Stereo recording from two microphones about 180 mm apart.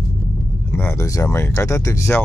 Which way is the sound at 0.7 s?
15° left (ahead or behind).